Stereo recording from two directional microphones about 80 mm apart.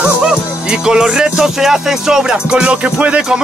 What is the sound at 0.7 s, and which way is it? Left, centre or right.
Music, centre.